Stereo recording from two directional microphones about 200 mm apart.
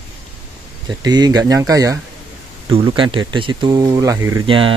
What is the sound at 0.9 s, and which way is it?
Speech, 20° right (ahead or behind).